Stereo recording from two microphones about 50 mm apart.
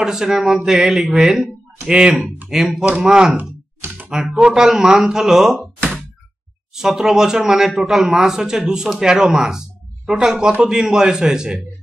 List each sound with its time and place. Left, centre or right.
0.0 s speech: centre
1.9 s speech: centre
2.5 s speech: centre
6.7 s speech: centre